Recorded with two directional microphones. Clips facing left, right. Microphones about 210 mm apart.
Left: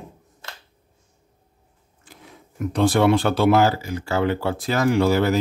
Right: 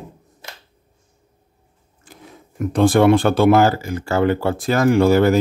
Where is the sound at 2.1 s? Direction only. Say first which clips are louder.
Right 4 dB; 45° right (ahead or behind).